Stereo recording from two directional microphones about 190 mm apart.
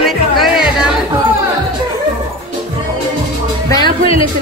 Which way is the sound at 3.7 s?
25° left (ahead or behind).